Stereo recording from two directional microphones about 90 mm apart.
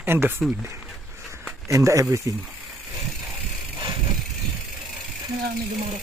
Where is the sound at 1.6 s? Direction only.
35° right (ahead or behind).